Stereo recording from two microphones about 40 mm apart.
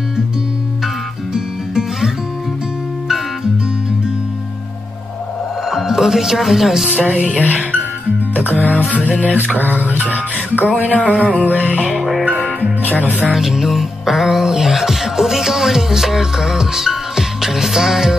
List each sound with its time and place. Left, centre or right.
1.3 s music: centre
5.7 s speech: centre
7.0 s music: right
7.2 s music: left
8.6 s music: left
9.8 s music: right
10.6 s music: left
12.0 s music: centre
12.4 s music: left
13.3 s music: centre